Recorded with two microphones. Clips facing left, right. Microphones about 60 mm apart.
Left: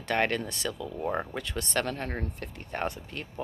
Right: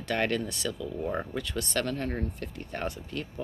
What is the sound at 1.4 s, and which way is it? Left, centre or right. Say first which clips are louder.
Speech: even; left.